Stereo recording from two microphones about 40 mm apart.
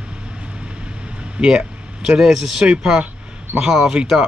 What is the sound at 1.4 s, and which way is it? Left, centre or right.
Speech, centre.